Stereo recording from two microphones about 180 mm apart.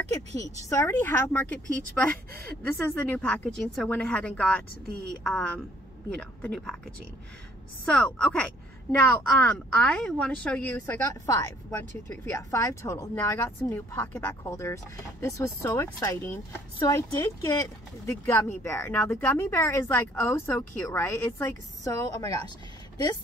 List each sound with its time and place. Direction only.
0.4 s a woman's voice: 15° left (ahead or behind)
2.6 s a woman's voice: 10° left (ahead or behind)
7.8 s a woman's voice: 5° left (ahead or behind)